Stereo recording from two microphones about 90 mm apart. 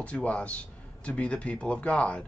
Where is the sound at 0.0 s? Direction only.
15° left (ahead or behind).